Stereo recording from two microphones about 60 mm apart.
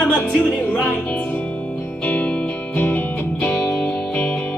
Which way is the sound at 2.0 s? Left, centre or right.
Left.